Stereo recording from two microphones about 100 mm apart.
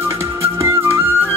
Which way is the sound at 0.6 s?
25° right (ahead or behind).